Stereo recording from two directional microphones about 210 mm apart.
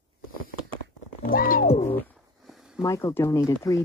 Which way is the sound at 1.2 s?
40° left (ahead or behind).